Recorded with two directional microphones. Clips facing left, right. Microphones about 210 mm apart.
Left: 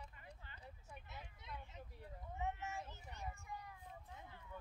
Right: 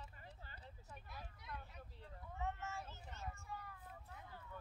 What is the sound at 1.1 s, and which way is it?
Vehicle, 20° left (ahead or behind).